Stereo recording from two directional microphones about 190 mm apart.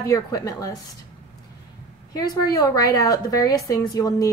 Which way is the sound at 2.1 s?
20° left (ahead or behind).